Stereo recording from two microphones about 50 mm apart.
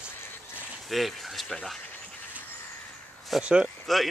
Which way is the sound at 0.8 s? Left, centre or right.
Centre.